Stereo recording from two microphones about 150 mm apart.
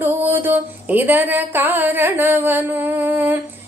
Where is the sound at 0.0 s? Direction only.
10° right (ahead or behind).